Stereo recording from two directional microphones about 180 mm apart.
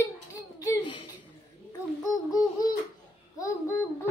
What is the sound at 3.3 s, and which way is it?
Speech, 15° left (ahead or behind).